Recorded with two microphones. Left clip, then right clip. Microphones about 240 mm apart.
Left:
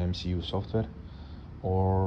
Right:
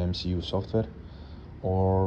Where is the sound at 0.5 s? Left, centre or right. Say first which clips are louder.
Right 4 dB; right.